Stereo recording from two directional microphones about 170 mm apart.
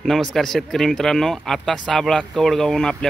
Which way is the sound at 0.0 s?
Centre (ahead or behind).